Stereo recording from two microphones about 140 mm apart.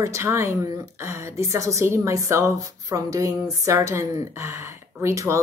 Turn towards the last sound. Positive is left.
turn(degrees=-20)  # may be behind; listen again after turning